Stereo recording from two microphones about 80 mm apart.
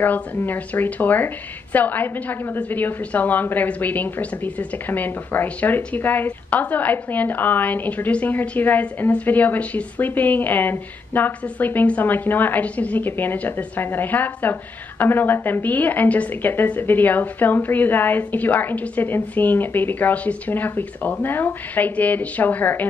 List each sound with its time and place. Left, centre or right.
0.0 s a woman's voice: left